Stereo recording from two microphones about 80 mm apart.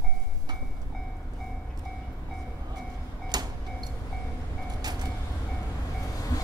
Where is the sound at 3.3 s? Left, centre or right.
Right.